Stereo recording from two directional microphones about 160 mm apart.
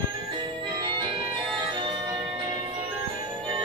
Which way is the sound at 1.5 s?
30° right (ahead or behind).